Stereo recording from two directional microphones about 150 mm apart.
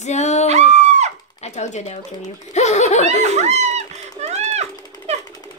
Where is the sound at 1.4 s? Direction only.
50° left (ahead or behind).